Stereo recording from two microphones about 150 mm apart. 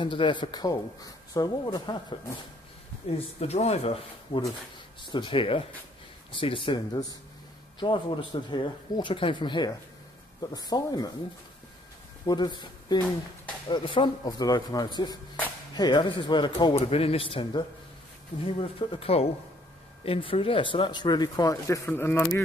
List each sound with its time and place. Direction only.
0.0 s speech: 35° left (ahead or behind)
3.1 s speech: 40° left (ahead or behind); by 11.1 s 25° left (ahead or behind)
12.3 s speech: 25° left (ahead or behind)